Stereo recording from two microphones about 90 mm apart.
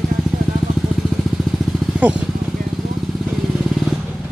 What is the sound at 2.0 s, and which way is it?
Speech, 15° right (ahead or behind).